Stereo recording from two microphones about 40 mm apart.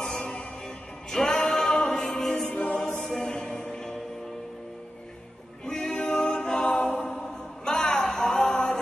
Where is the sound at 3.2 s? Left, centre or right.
Centre.